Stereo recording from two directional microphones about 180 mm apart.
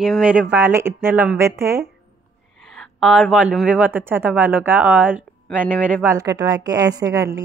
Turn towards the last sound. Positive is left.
turn(degrees=-15)  # may be behind; listen again after turning